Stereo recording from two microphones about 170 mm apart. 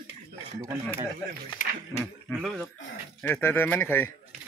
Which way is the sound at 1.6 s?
50° left (ahead or behind).